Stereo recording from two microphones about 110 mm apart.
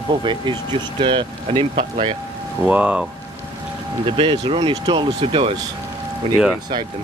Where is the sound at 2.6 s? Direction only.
10° right (ahead or behind).